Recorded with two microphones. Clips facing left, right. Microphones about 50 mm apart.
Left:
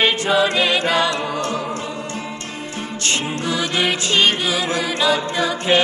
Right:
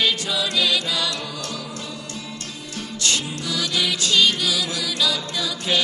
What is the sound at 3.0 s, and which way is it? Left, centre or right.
Music, left.